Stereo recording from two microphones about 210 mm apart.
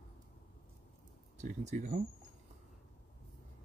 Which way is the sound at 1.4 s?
35° right (ahead or behind).